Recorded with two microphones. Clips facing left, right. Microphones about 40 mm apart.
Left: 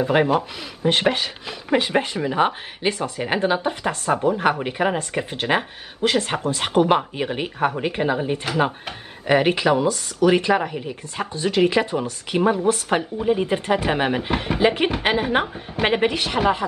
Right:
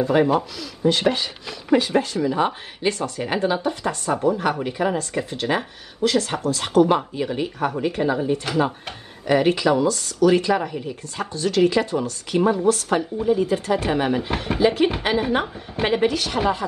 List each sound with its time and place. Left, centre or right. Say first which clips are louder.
0.0 s speech: even; left